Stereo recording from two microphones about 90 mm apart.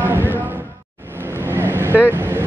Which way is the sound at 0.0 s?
25° right (ahead or behind).